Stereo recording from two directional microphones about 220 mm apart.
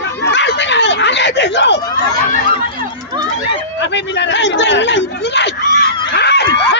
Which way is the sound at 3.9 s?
50° left (ahead or behind).